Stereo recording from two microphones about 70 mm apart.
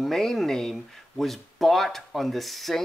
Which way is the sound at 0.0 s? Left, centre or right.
Centre.